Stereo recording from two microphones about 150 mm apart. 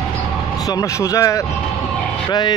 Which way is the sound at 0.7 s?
20° left (ahead or behind).